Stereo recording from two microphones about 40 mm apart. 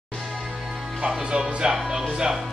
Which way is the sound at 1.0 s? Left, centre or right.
Centre.